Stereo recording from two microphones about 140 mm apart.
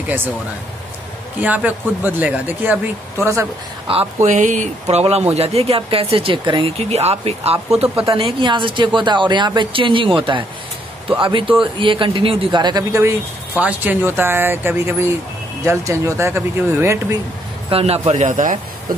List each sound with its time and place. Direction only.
1.4 s speech: 10° right (ahead or behind)
4.2 s speech: 60° right (ahead or behind); by 13.1 s 25° right (ahead or behind)
13.6 s speech: 10° right (ahead or behind)
17.6 s speech: 45° right (ahead or behind); by 18.6 s 65° right (ahead or behind)